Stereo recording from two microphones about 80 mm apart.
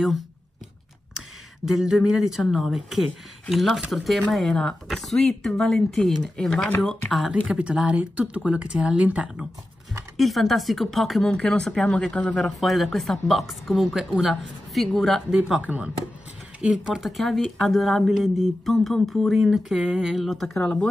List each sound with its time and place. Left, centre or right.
1.7 s speech: centre
10.1 s speech: centre
15.6 s speech: centre
16.6 s speech: centre